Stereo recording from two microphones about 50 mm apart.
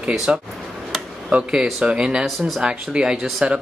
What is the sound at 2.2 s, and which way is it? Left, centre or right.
Speech, centre.